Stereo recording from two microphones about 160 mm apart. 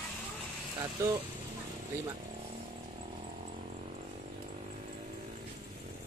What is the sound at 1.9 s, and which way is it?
Speech, 15° right (ahead or behind).